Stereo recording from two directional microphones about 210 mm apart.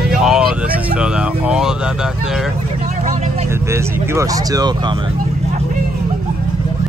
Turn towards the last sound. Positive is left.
turn(degrees=-20)  # may be behind; listen again after turning